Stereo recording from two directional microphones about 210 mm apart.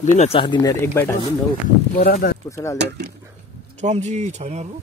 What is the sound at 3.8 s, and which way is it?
Speech, 35° right (ahead or behind).